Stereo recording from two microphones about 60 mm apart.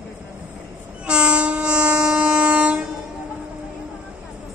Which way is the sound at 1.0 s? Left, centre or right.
Centre.